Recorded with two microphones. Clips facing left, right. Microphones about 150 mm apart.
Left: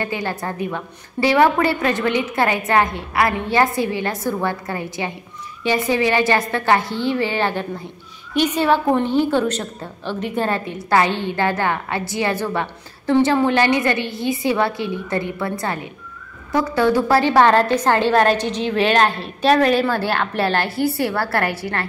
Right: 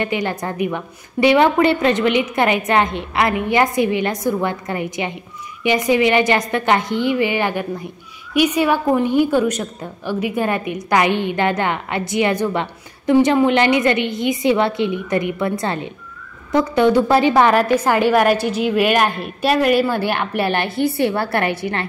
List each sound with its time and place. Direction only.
0.0 s a woman's voice: 20° right (ahead or behind)